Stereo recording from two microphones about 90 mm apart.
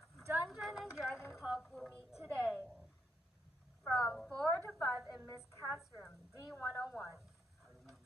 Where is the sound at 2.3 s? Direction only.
15° left (ahead or behind).